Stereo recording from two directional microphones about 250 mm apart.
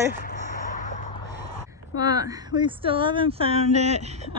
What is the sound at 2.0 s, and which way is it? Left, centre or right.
Speech, centre.